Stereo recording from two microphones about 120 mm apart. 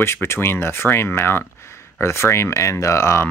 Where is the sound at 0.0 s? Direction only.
20° left (ahead or behind).